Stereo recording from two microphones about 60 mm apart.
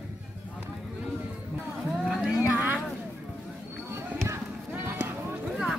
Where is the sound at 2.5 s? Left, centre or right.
Right.